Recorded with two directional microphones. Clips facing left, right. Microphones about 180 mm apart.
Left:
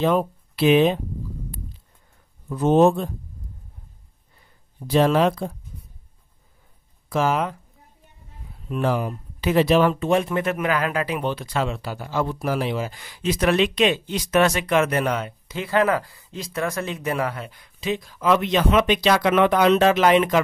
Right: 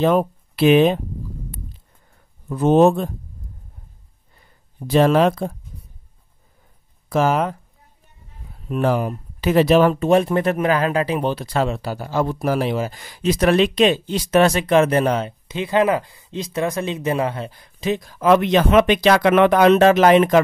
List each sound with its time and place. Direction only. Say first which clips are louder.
0.0 s speech: right 3 dB; 50° right (ahead or behind)
2.5 s speech: right 2 dB; 60° right (ahead or behind)
4.8 s speech: right 3 dB; 50° right (ahead or behind)
7.1 s speech: right 3 dB; 45° right (ahead or behind)
8.6 s speech: right 3 dB; 50° right (ahead or behind)